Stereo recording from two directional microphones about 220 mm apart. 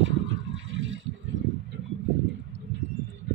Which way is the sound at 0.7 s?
60° right (ahead or behind).